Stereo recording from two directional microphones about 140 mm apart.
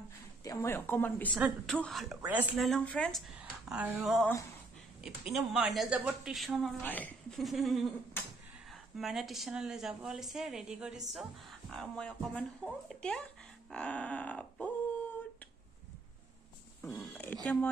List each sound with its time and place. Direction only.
0.4 s speech: 20° left (ahead or behind)
1.3 s a woman's voice: 5° right (ahead or behind)
2.2 s speech: 10° right (ahead or behind)
2.5 s a woman's voice: centre (ahead or behind)
5.3 s a woman's voice: centre (ahead or behind)
6.8 s speech: 10° left (ahead or behind)
7.3 s a woman's voice: centre (ahead or behind)
16.8 s speech: 10° left (ahead or behind)